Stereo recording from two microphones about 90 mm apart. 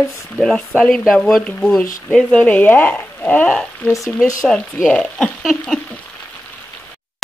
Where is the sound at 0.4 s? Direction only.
10° left (ahead or behind).